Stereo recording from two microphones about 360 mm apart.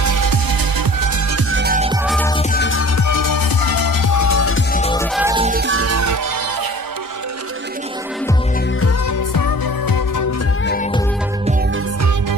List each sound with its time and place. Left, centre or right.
0.0 s music: right
1.5 s music: right
2.0 s music: centre
2.3 s music: left
3.0 s music: left
4.7 s music: centre
5.1 s music: centre
5.5 s music: right
9.3 s music: left